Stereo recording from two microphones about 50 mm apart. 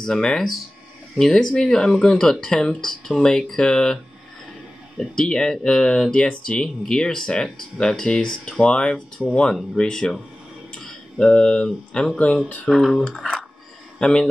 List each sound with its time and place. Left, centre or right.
0.0 s speech: centre
5.1 s speech: centre
11.2 s a man's voice: centre